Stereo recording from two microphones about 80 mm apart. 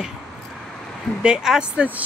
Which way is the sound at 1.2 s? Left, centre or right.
Centre.